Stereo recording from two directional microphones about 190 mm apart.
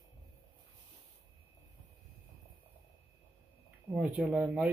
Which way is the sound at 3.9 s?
5° right (ahead or behind).